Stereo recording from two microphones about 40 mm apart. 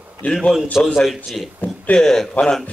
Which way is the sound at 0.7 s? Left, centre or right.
Centre.